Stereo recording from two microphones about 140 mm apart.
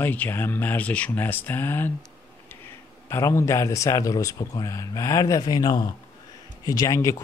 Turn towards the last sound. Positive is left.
turn(degrees=20)  # may be behind; listen again after turning